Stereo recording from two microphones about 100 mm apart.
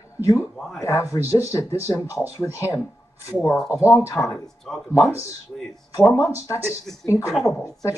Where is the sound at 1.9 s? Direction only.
45° left (ahead or behind).